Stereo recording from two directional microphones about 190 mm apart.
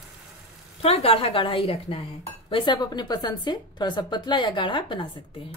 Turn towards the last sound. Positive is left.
turn(degrees=25)  # may be behind; listen again after turning